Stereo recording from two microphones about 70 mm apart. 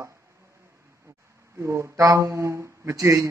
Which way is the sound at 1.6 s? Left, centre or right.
Right.